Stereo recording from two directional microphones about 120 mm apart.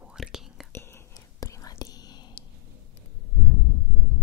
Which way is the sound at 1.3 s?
30° left (ahead or behind).